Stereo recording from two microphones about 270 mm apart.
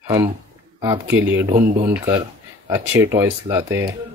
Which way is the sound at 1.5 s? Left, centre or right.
Right.